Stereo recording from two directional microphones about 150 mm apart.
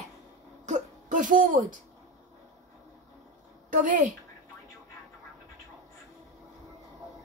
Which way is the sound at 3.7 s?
60° right (ahead or behind).